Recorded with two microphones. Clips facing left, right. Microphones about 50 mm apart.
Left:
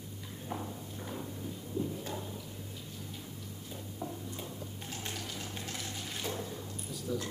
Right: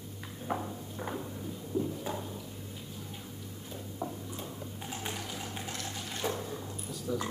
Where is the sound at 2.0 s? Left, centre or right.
Centre.